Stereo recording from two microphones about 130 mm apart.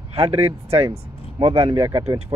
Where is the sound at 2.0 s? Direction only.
30° right (ahead or behind).